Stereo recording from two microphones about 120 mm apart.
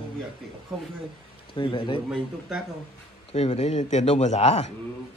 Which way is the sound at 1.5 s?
45° left (ahead or behind).